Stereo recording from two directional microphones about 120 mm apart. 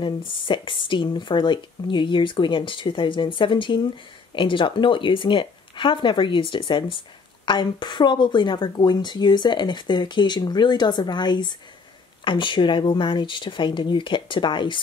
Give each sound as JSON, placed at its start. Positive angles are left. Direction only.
{"t": 0.0, "sound": "speech", "side_deg": 45}